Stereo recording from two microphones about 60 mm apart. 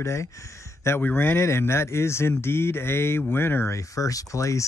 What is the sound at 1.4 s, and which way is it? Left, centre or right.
Speech, left.